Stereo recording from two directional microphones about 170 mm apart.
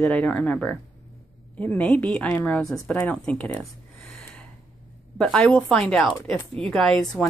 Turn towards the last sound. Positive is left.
turn(degrees=0)  # may be behind; listen again after turning